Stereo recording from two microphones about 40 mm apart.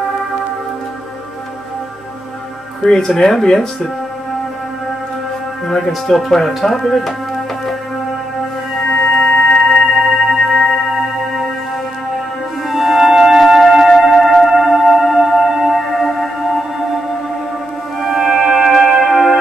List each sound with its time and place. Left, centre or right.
2.8 s speech: centre
5.9 s speech: centre
8.8 s singing bowl: centre
9.9 s singing bowl: centre
12.6 s music: centre
18.0 s music: centre